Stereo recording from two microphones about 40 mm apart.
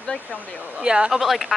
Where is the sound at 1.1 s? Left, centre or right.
Centre.